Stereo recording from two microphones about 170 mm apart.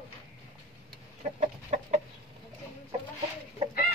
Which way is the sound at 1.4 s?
40° right (ahead or behind).